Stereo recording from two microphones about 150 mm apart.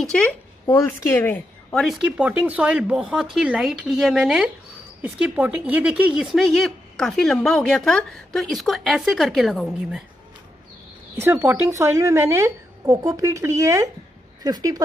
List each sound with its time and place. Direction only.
0.0 s speech: 5° left (ahead or behind)
0.7 s a woman's voice: 15° left (ahead or behind)
1.7 s speech: centre (ahead or behind)
11.1 s a woman's voice: 15° right (ahead or behind)